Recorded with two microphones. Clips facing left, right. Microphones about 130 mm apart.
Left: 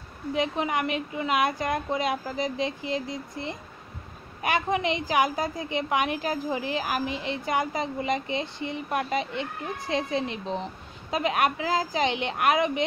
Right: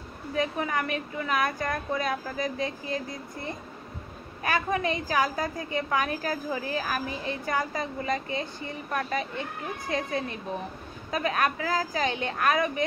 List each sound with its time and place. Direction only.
0.3 s a woman's voice: 20° left (ahead or behind)